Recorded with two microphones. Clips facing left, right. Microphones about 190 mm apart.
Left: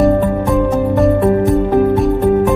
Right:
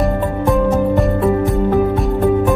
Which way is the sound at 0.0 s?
Centre (ahead or behind).